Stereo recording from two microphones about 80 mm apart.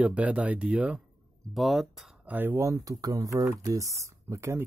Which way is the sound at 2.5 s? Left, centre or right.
Right.